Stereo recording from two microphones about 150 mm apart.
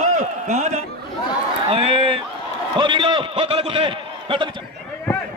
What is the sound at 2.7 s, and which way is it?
A man's voice, 35° right (ahead or behind).